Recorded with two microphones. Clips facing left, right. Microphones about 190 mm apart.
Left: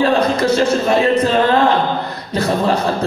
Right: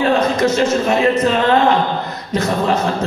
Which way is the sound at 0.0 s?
35° left (ahead or behind).